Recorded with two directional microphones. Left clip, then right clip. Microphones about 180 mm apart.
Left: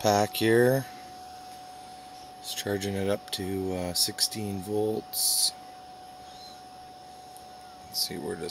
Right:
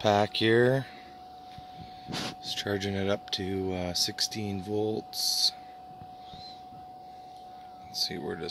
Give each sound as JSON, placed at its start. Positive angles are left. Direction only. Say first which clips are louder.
{"t": 0.0, "sound": "speech", "louder": "left 1 dB", "side_deg": 0}
{"t": 2.4, "sound": "speech", "louder": "left 3 dB", "side_deg": 0}
{"t": 7.9, "sound": "speech", "louder": "even", "side_deg": 0}